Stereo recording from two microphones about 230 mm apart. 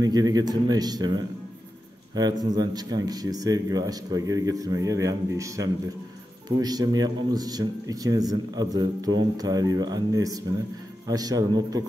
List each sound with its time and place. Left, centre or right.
0.0 s speech: centre